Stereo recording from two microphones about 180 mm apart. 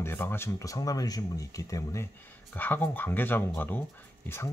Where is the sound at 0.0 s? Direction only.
10° left (ahead or behind).